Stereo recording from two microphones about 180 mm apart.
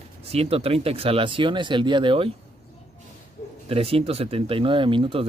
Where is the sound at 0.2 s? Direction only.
35° right (ahead or behind).